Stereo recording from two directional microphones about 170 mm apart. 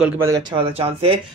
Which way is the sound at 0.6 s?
35° right (ahead or behind).